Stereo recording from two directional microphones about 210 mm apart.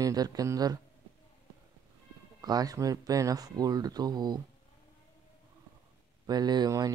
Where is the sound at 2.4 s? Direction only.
20° right (ahead or behind).